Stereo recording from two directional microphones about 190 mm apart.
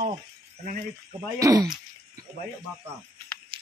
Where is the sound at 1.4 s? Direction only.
20° right (ahead or behind).